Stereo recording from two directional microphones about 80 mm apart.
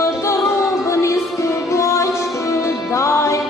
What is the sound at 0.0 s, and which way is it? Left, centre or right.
Music, left.